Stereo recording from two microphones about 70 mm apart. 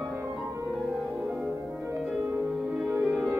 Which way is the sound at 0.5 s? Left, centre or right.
Right.